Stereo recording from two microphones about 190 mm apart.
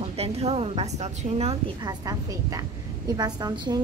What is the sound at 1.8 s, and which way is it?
A woman's voice, 20° right (ahead or behind).